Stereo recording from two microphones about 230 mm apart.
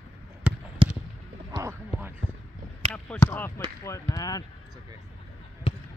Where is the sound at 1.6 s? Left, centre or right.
Centre.